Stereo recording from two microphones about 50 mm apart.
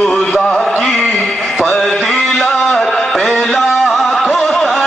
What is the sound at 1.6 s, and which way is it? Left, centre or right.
Mantra, centre.